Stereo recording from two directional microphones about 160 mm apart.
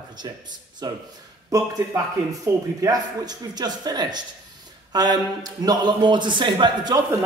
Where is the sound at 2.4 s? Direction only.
20° right (ahead or behind).